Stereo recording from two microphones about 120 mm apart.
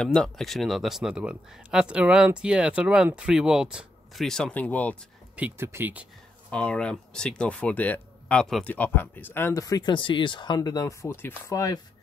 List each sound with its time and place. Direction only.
0.0 s speech: 5° left (ahead or behind)
5.3 s speech: 10° right (ahead or behind)
6.5 s speech: 10° left (ahead or behind); by 11.8 s 25° left (ahead or behind)